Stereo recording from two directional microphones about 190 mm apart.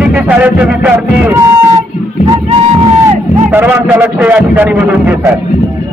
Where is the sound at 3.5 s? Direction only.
10° right (ahead or behind).